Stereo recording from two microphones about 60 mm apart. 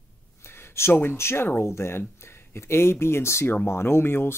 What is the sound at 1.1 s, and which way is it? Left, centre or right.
Speech, left.